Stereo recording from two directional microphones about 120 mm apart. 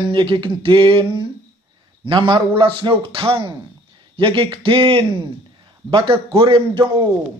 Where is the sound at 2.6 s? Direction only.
45° right (ahead or behind).